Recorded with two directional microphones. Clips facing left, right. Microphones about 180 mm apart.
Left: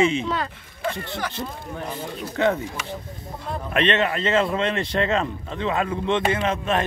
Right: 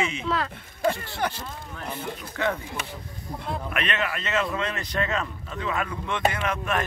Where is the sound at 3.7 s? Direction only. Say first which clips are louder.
Left 10 dB; 30° left (ahead or behind).